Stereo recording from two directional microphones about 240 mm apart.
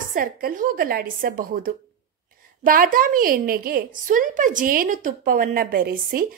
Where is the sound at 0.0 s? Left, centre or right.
Right.